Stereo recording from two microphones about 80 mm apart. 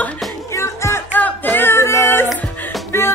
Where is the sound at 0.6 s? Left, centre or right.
Left.